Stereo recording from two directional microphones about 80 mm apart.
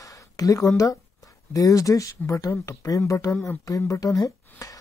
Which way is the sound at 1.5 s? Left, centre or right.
Left.